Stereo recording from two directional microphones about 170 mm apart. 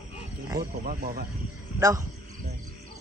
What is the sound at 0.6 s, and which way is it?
Speech, 55° right (ahead or behind).